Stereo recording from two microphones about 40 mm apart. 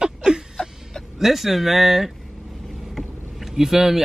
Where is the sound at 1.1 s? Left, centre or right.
Centre.